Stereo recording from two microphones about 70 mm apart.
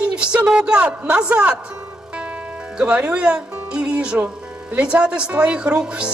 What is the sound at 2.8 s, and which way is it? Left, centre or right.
Speech, centre.